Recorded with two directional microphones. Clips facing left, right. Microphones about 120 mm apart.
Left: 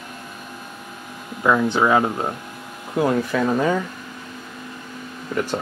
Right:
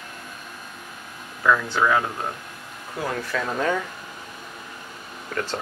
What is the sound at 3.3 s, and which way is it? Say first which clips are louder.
Speech: left 5 dB; 10° left (ahead or behind).